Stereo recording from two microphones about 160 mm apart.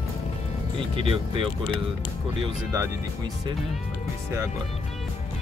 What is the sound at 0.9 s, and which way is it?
Speech, 35° right (ahead or behind).